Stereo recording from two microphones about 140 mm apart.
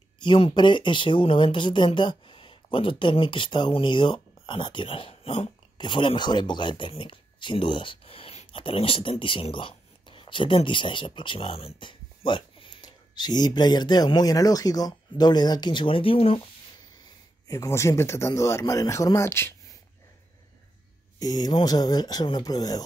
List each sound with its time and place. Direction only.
0.2 s speech: 35° left (ahead or behind)
5.8 s speech: 35° left (ahead or behind)
17.5 s speech: 20° left (ahead or behind)
21.2 s speech: 30° left (ahead or behind)